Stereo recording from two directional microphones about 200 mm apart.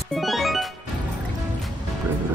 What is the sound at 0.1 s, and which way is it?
Music, centre (ahead or behind).